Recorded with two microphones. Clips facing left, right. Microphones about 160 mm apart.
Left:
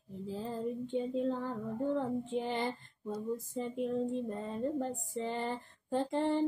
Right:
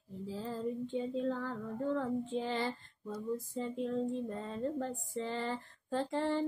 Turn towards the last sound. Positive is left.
turn(degrees=20)  # may be behind; listen again after turning